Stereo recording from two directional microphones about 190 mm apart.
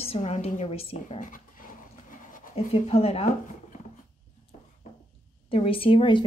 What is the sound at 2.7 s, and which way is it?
Speech, 35° left (ahead or behind).